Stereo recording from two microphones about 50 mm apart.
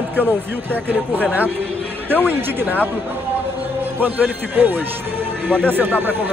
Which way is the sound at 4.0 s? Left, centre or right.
Right.